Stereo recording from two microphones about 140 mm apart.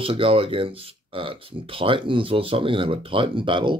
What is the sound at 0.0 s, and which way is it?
Speech, 40° right (ahead or behind).